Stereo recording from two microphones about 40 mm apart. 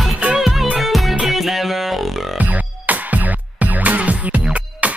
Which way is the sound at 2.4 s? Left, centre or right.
Right.